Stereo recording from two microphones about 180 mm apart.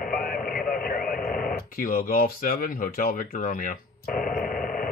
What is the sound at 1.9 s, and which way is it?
Speech, 55° left (ahead or behind).